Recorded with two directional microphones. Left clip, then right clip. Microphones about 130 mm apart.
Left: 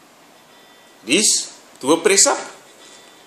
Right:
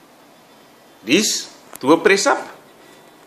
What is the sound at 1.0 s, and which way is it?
Speech, centre (ahead or behind).